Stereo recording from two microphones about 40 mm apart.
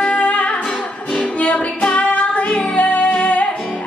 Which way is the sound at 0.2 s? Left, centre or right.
Left.